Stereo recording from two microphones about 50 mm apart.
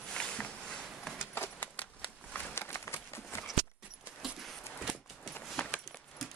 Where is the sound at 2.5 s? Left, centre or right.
Left.